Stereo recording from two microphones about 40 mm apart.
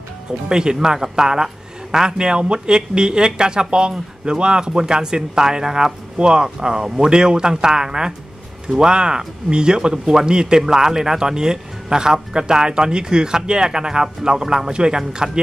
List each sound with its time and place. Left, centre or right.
0.5 s a man's voice: centre